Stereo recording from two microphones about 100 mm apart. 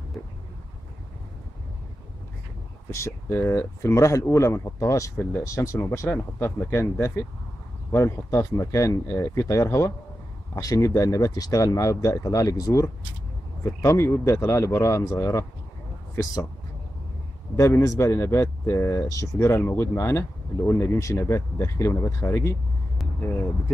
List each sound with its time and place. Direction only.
2.9 s speech: 25° left (ahead or behind)
5.1 s speech: 20° left (ahead or behind)
5.4 s speech: 30° left (ahead or behind)
17.6 s speech: 25° left (ahead or behind)